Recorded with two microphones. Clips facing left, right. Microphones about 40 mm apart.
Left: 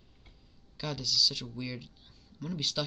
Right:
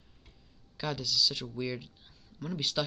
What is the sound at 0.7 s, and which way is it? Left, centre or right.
Speech, centre.